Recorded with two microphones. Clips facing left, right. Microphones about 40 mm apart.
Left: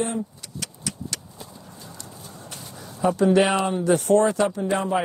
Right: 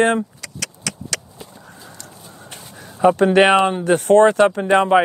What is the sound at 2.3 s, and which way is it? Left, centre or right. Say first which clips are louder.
Crow: right 2 dB; right.